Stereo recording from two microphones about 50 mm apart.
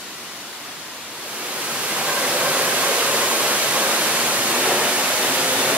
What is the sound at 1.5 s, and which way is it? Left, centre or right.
Waterfall, right.